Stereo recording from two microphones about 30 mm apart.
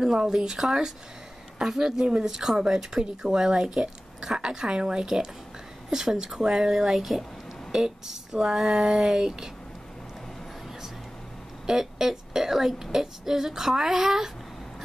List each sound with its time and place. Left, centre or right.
0.0 s a woman's voice: right
1.8 s a woman's voice: centre
11.6 s speech: centre